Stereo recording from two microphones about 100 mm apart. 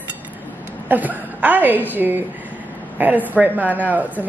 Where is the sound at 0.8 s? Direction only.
15° right (ahead or behind).